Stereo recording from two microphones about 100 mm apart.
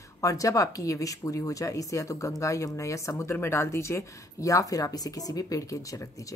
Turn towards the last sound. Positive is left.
turn(degrees=35)  # may be behind; listen again after turning